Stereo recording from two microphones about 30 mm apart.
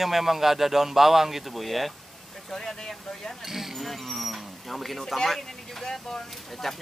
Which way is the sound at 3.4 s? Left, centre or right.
Centre.